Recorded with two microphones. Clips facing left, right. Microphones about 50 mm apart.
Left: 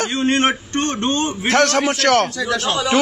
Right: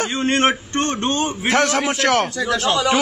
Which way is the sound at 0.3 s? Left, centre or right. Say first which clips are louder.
Right 1 dB; right.